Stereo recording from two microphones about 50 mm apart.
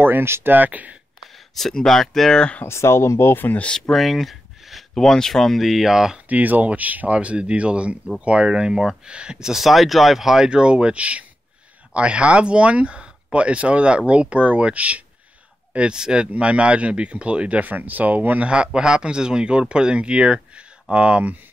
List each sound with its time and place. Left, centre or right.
0.0 s speech: right
1.5 s speech: centre
2.6 s speech: left
3.9 s speech: centre
4.9 s speech: centre
5.7 s speech: centre
6.2 s speech: right; by 10.5 s centre
10.5 s speech: centre
18.5 s speech: centre